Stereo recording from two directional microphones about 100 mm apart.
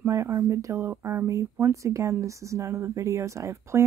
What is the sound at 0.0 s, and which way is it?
Speech, 30° right (ahead or behind).